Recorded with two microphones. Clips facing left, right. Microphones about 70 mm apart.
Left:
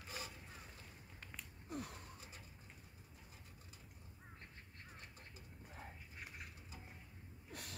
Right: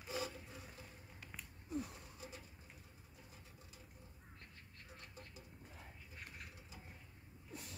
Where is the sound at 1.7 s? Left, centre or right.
Left.